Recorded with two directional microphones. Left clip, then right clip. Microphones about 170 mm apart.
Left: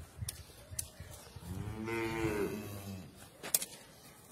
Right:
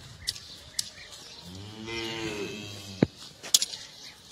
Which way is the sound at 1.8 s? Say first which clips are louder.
Right 2 dB; 20° right (ahead or behind).